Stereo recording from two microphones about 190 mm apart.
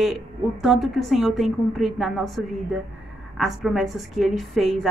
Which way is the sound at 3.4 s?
Centre (ahead or behind).